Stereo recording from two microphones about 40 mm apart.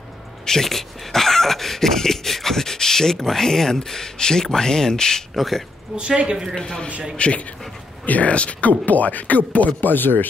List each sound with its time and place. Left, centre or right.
0.5 s speech: centre
5.3 s speech: centre
5.9 s a woman's voice: right
6.5 s speech: left
8.0 s speech: left
9.8 s speech: left